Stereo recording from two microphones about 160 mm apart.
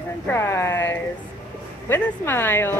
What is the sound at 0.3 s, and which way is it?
A woman's voice, 15° left (ahead or behind).